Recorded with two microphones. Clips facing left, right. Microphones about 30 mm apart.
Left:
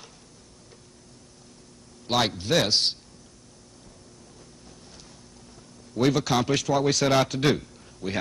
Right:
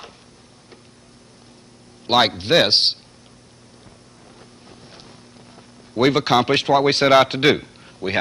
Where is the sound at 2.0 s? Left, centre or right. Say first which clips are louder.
Right 8 dB; right.